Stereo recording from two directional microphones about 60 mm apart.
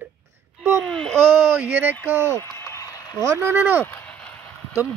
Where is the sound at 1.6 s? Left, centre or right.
Right.